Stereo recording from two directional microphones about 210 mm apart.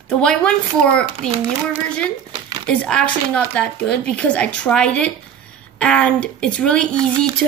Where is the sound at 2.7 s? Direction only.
5° left (ahead or behind).